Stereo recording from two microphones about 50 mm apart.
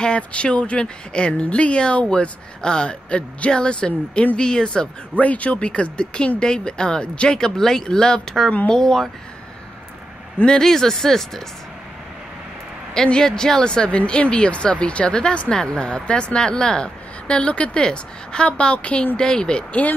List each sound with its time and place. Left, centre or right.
0.0 s speech: left
5.1 s speech: left
8.7 s speech: centre
10.4 s speech: centre
12.9 s speech: centre